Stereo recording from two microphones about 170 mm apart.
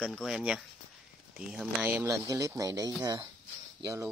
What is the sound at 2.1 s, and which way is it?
Speech, 20° right (ahead or behind).